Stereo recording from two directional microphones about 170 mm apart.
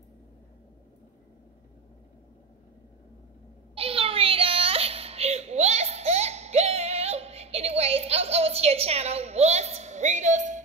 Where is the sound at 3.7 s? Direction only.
35° right (ahead or behind).